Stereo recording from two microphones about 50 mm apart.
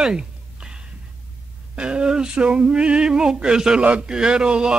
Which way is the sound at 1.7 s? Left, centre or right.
Centre.